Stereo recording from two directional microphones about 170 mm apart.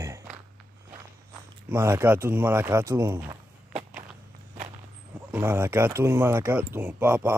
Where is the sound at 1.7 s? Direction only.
15° right (ahead or behind).